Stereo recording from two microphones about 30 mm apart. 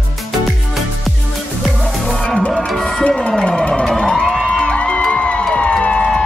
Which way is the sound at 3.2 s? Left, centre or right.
Left.